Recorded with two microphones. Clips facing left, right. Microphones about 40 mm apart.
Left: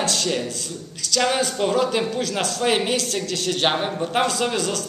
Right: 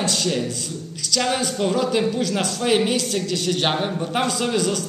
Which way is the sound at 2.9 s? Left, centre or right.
Centre.